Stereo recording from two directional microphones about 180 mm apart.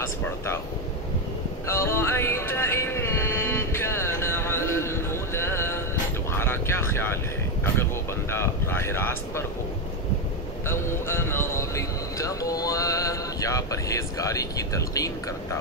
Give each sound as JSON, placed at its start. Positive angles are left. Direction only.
{"t": 1.7, "sound": "music", "side_deg": 15}
{"t": 6.3, "sound": "vehicle", "side_deg": 15}
{"t": 10.7, "sound": "a sound", "side_deg": 15}